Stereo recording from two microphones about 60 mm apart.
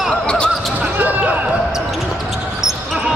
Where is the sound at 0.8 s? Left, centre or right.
Right.